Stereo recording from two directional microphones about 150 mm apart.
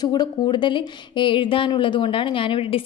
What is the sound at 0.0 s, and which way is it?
Speech, 30° left (ahead or behind).